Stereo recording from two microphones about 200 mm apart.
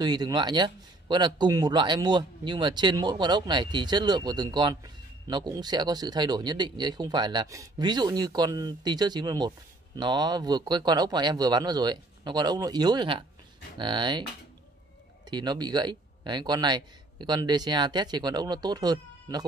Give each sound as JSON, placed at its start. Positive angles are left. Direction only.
{"t": 0.0, "sound": "speech", "side_deg": -20}
{"t": 15.2, "sound": "speech", "side_deg": -20}